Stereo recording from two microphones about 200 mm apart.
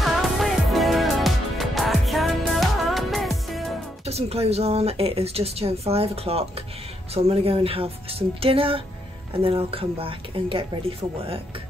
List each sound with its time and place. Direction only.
0.0 s music: centre (ahead or behind)
4.0 s speech: 30° right (ahead or behind)